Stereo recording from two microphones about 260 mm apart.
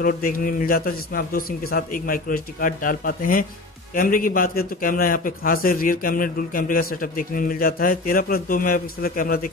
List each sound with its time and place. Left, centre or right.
0.0 s a man's voice: left